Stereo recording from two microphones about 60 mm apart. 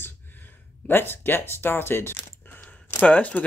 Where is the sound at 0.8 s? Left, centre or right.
Left.